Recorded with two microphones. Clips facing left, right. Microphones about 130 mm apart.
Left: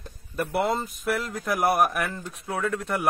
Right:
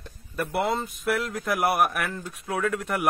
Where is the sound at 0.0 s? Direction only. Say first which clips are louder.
Left 1 dB; centre (ahead or behind).